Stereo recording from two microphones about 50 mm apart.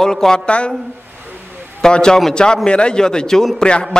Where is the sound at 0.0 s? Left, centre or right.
Centre.